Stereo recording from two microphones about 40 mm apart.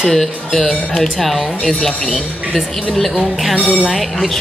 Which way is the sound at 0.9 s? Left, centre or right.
Centre.